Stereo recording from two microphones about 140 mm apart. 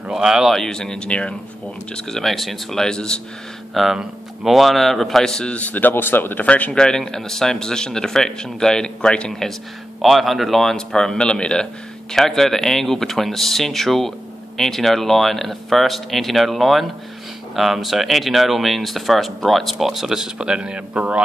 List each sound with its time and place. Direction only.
0.1 s a man's voice: 5° right (ahead or behind)